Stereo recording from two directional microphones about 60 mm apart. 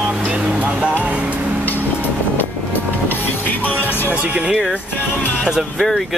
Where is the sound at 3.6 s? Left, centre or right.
Left.